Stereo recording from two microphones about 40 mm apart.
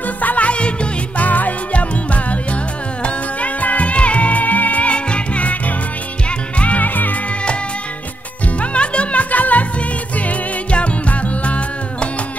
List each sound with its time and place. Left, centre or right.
0.2 s music: left
0.5 s music: left
1.2 s music: left
4.9 s music: left
8.5 s music: left